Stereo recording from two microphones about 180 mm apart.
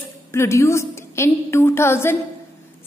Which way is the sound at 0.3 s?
15° left (ahead or behind).